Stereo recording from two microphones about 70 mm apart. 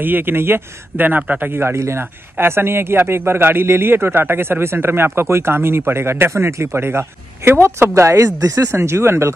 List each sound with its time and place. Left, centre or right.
0.0 s speech: right
1.5 s a man's voice: right